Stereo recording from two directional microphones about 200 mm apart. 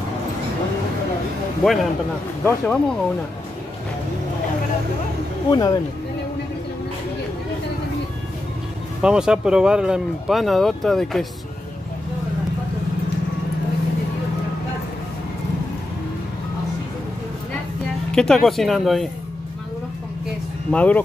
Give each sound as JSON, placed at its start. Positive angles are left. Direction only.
{"t": 1.6, "sound": "speech", "side_deg": 0}
{"t": 5.5, "sound": "speech", "side_deg": 20}
{"t": 9.0, "sound": "speech", "side_deg": -5}
{"t": 18.1, "sound": "speech", "side_deg": 0}
{"t": 20.7, "sound": "speech", "side_deg": 5}